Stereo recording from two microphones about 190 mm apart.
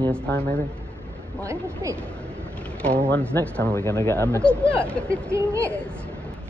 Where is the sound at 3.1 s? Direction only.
10° left (ahead or behind).